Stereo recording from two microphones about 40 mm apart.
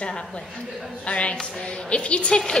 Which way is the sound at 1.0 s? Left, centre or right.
Left.